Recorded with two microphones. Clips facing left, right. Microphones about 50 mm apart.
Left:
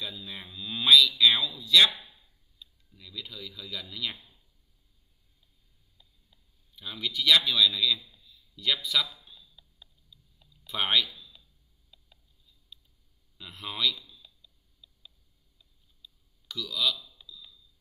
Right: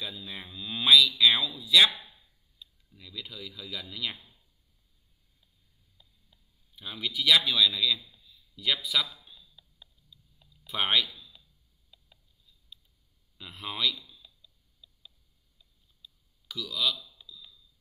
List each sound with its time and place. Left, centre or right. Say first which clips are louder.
0.3 s speech: even; centre
3.0 s speech: even; centre
5.9 s a sound: even; centre
13.4 s a man's voice: even; centre
14.8 s tick: even; centre
16.0 s a sound: even; centre